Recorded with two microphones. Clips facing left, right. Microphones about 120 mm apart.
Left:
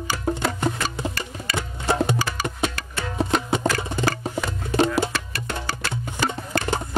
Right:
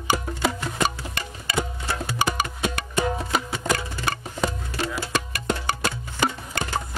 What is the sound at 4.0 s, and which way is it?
Music, 20° left (ahead or behind).